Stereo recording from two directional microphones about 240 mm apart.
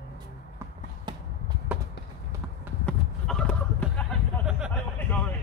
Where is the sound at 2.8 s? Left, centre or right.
Centre.